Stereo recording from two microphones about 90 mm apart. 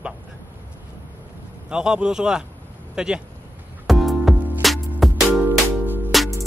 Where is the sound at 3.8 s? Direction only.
Centre (ahead or behind).